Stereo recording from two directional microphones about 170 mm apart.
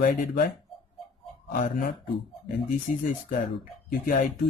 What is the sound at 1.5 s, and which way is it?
Speech, 50° left (ahead or behind).